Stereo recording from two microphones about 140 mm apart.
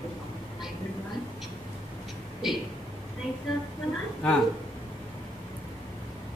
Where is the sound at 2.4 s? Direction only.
Centre (ahead or behind).